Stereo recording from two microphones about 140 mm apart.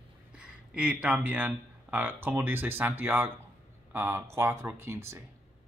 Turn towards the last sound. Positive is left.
turn(degrees=-20)  # may be behind; listen again after turning